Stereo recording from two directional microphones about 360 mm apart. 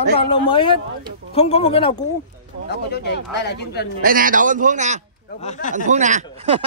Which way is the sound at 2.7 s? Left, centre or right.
Left.